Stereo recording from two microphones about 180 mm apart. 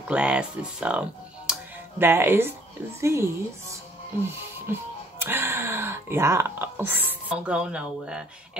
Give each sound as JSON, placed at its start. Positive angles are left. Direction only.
{"t": 0.1, "sound": "speech", "side_deg": -5}
{"t": 1.5, "sound": "music", "side_deg": -10}
{"t": 3.0, "sound": "speech", "side_deg": -15}
{"t": 4.7, "sound": "speech", "side_deg": -15}